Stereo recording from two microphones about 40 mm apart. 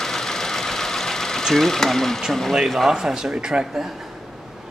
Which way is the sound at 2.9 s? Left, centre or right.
Centre.